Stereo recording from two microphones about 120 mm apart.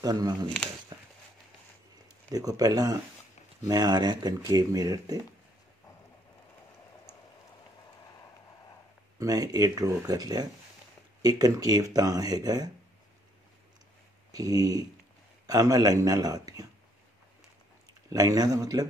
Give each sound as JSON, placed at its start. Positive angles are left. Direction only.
{"t": 0.0, "sound": "speech", "side_deg": -30}
{"t": 2.3, "sound": "speech", "side_deg": -30}
{"t": 9.2, "sound": "speech", "side_deg": -30}
{"t": 14.3, "sound": "speech", "side_deg": -30}
{"t": 18.1, "sound": "speech", "side_deg": -30}